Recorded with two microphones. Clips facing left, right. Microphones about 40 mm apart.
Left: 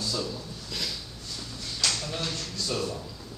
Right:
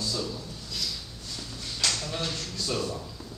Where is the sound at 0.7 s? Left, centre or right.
Left.